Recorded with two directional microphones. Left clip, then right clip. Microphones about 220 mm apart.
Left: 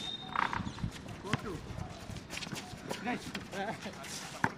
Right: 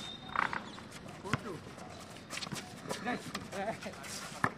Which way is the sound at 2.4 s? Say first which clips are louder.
Even; 15° right (ahead or behind).